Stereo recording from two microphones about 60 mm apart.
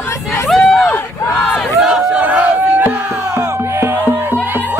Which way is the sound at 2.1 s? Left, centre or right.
Right.